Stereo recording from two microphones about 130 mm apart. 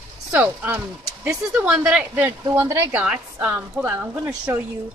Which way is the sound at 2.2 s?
20° right (ahead or behind).